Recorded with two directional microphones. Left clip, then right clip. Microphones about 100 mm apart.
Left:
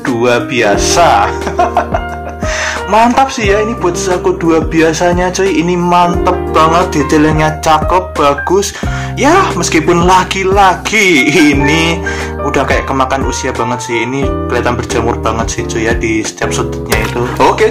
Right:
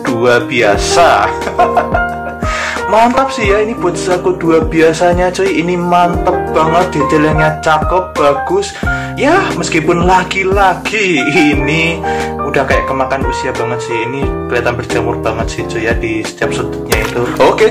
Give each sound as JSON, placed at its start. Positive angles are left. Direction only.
{"t": 0.2, "sound": "music", "side_deg": 20}
{"t": 2.9, "sound": "music", "side_deg": 20}
{"t": 7.1, "sound": "speech", "side_deg": 50}
{"t": 14.5, "sound": "speech", "side_deg": 50}
{"t": 16.9, "sound": "speech", "side_deg": 0}